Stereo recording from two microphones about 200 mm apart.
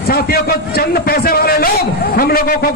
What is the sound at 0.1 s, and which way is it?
A man's voice, 50° left (ahead or behind).